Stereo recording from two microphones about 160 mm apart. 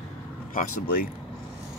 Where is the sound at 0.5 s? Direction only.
60° left (ahead or behind).